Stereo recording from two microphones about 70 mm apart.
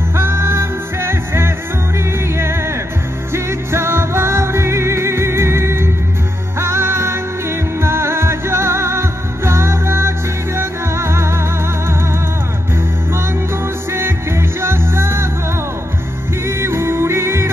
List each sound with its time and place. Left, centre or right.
0.1 s music: right
13.9 s music: right
16.4 s music: right